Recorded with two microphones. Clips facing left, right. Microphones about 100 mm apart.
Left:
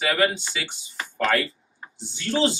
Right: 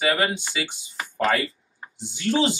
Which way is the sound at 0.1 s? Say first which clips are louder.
Left 1 dB; 20° right (ahead or behind).